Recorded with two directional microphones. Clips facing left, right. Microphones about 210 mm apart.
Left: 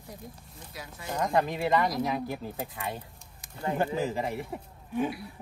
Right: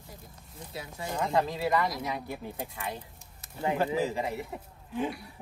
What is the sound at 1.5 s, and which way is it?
Speech, 20° left (ahead or behind).